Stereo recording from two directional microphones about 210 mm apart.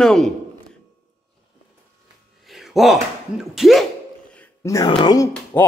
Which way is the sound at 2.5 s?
Centre (ahead or behind).